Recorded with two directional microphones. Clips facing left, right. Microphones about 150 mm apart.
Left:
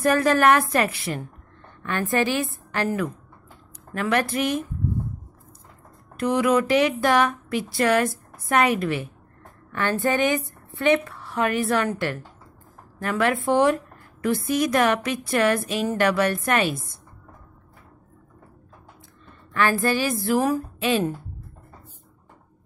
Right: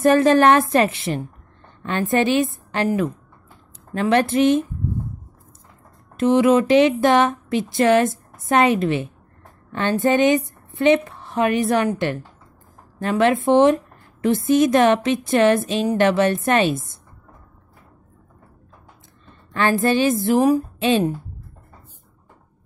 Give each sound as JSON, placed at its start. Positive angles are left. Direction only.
{"t": 0.0, "sound": "a woman's voice", "side_deg": -25}
{"t": 6.1, "sound": "a woman's voice", "side_deg": -25}
{"t": 19.5, "sound": "a woman's voice", "side_deg": -25}